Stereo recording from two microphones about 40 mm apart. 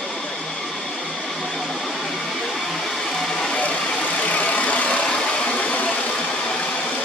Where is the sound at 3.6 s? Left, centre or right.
Left.